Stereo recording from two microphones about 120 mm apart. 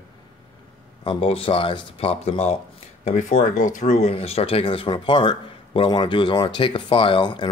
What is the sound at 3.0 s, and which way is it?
Speech, 80° left.